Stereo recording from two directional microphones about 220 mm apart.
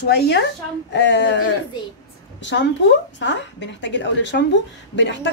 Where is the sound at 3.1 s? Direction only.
55° left (ahead or behind).